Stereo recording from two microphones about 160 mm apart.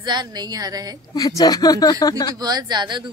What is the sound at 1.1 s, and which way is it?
Speech, 25° left (ahead or behind).